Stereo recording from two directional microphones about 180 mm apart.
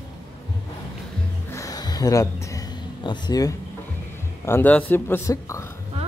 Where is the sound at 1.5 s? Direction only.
20° left (ahead or behind).